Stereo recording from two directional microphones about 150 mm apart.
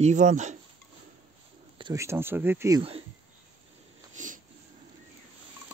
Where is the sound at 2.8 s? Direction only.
40° right (ahead or behind).